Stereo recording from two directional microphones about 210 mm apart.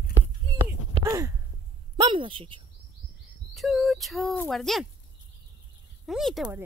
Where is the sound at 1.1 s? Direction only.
15° right (ahead or behind).